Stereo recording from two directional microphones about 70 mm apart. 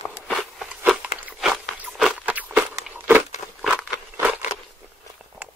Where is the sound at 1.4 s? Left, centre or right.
Centre.